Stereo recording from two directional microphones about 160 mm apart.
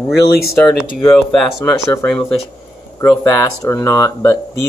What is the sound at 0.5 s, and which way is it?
Speech, 15° left (ahead or behind).